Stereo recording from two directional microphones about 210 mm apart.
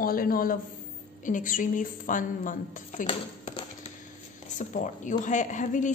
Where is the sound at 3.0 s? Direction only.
25° left (ahead or behind).